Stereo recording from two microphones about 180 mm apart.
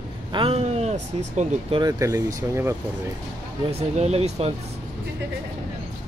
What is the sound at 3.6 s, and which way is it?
Speech, 35° right (ahead or behind).